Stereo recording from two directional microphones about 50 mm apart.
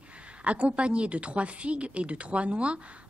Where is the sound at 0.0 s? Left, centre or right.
Right.